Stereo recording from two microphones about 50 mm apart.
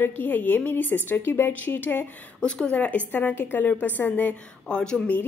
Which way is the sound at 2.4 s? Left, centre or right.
Left.